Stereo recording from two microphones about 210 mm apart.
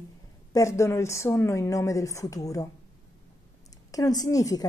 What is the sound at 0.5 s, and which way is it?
A woman's voice, 15° left (ahead or behind).